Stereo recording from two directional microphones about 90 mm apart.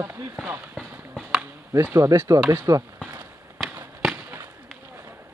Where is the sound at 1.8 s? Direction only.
35° right (ahead or behind).